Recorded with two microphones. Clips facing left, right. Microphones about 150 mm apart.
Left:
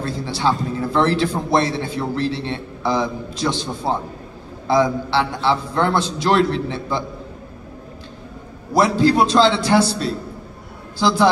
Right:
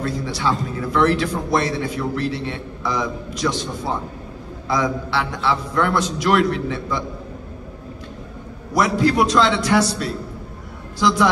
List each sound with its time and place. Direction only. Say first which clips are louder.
0.0 s a man's voice: left 2 dB; 30° left (ahead or behind)
8.7 s a man's voice: left 2 dB; 30° left (ahead or behind)